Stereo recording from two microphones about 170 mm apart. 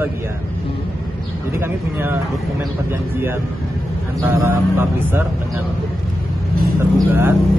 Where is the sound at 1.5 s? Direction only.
15° right (ahead or behind).